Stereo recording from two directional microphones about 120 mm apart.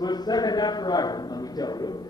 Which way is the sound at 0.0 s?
35° left (ahead or behind).